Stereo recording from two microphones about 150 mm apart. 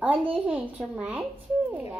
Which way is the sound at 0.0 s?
10° right (ahead or behind).